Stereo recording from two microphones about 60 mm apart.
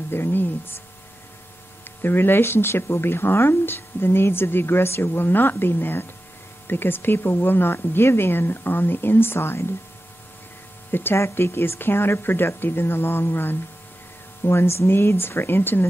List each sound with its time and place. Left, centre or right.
0.1 s speech: left
1.9 s speech: left
10.9 s speech: left
11.1 s speech: left